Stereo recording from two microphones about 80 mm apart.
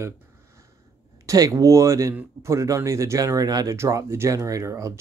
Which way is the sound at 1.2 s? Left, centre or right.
Right.